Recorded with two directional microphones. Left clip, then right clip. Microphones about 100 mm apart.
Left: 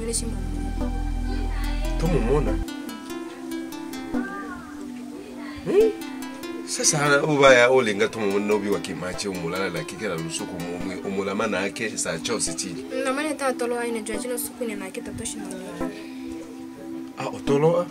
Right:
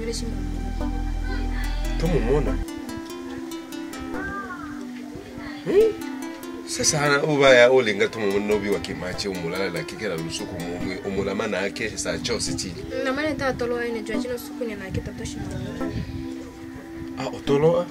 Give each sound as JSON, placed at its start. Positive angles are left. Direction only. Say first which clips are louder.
{"t": 2.0, "sound": "speech", "louder": "right 1 dB", "side_deg": -5}
{"t": 6.7, "sound": "speech", "louder": "left 1 dB", "side_deg": -5}
{"t": 12.9, "sound": "speech", "louder": "right 1 dB", "side_deg": 15}
{"t": 17.2, "sound": "speech", "louder": "right 1 dB", "side_deg": -5}